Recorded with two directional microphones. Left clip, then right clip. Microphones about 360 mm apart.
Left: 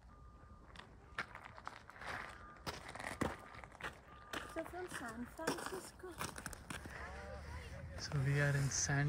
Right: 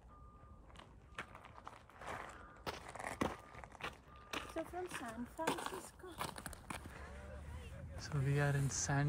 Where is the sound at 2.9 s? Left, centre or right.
Centre.